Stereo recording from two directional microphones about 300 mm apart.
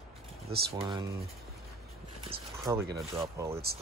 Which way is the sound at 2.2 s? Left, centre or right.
Centre.